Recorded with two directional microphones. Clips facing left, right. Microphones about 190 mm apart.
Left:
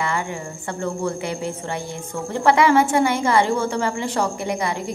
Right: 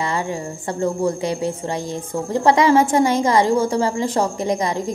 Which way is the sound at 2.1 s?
40° right (ahead or behind).